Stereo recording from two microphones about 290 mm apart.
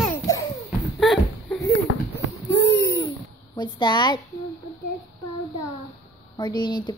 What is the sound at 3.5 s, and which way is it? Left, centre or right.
Speech, centre.